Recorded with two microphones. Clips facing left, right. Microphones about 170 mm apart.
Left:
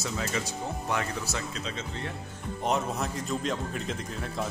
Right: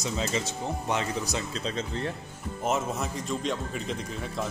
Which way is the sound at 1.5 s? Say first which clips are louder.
Right 4 dB; 35° right (ahead or behind).